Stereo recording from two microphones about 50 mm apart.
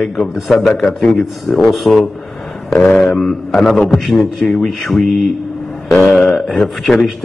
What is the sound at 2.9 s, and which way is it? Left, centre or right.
Mantra, centre.